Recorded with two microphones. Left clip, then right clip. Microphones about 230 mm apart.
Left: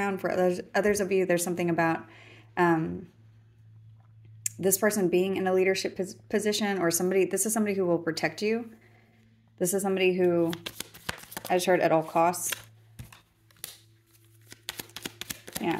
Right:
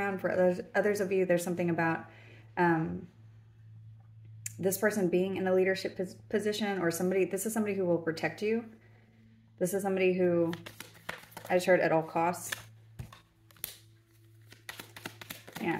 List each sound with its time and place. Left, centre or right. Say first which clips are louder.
0.0 s speech: left 2 dB; left
4.4 s speech: left 4 dB; left
9.6 s speech: left 3 dB; left
11.4 s speech: left 2 dB; left
14.5 s a sound: left 6 dB; left